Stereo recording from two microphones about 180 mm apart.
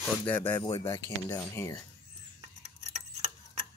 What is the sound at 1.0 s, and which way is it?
Speech, 15° left (ahead or behind).